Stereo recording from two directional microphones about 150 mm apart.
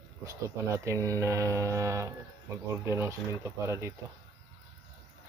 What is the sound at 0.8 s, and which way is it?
Speech, 20° right (ahead or behind).